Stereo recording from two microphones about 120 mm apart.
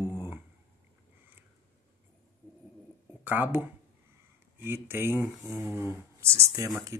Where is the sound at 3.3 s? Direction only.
15° right (ahead or behind).